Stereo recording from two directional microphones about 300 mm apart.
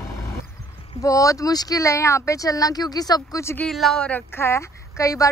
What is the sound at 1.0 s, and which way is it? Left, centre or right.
Speech, centre.